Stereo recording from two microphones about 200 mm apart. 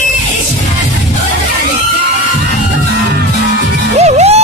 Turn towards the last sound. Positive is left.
turn(degrees=-35)  # may be behind; listen again after turning